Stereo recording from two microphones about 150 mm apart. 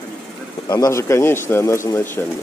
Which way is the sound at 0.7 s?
20° left (ahead or behind).